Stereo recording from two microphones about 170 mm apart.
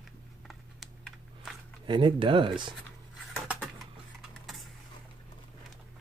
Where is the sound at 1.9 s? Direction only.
30° right (ahead or behind).